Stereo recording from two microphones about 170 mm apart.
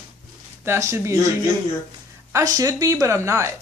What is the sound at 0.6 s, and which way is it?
Speech, 15° right (ahead or behind).